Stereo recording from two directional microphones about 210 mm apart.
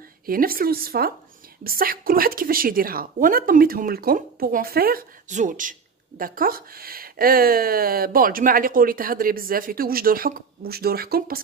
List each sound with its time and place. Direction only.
0.3 s a woman's voice: 45° right (ahead or behind)